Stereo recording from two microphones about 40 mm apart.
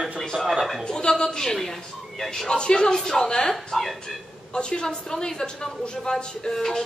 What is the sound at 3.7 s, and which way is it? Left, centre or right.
Speech, centre.